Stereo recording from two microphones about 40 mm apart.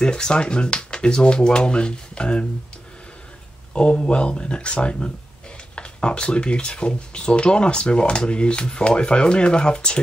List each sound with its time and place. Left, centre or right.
0.0 s speech: left
3.7 s speech: left